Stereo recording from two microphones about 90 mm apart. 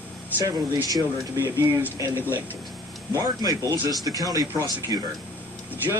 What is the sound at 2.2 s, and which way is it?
Speech, 25° right (ahead or behind).